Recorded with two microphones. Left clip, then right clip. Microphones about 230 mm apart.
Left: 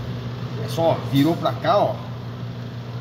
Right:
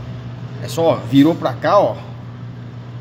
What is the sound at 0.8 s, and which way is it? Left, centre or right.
A man's voice, right.